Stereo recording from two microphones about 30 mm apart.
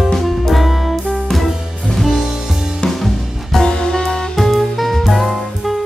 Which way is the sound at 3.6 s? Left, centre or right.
Left.